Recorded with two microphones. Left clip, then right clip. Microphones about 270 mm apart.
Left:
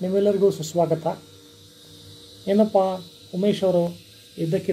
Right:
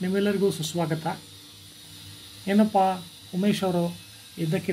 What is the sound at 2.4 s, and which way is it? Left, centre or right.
Speech, right.